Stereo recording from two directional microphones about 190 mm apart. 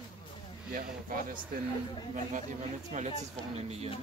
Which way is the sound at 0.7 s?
45° right (ahead or behind).